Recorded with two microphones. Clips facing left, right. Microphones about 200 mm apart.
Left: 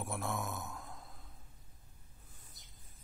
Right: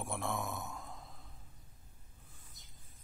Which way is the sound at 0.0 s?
Centre (ahead or behind).